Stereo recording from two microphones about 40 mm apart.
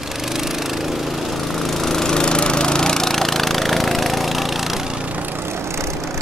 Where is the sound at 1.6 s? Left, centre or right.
Centre.